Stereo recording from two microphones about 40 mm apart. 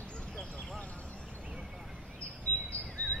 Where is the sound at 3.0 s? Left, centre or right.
Left.